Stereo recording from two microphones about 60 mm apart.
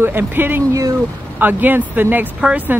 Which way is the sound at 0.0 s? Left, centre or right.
Right.